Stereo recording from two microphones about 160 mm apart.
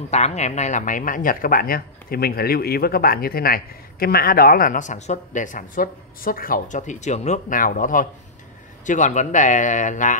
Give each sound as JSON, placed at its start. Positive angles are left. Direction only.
{"t": 0.1, "sound": "speech", "side_deg": 45}